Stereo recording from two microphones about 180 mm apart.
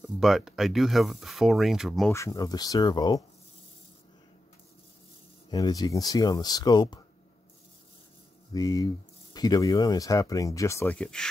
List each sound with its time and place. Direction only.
0.2 s speech: centre (ahead or behind)
2.1 s speech: 15° left (ahead or behind)
5.5 s speech: 20° left (ahead or behind)
8.5 s speech: 20° left (ahead or behind)